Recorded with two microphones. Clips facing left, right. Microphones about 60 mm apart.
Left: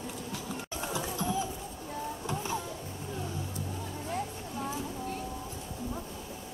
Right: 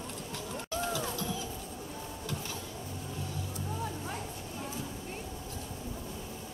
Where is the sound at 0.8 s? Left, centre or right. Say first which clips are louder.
Even; left.